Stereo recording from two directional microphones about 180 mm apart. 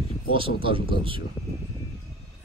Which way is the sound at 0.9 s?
30° right (ahead or behind).